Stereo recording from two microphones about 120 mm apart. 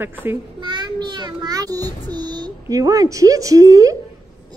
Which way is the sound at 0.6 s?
40° right (ahead or behind).